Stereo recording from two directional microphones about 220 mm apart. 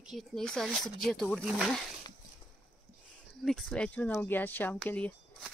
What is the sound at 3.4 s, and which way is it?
Speech, centre (ahead or behind).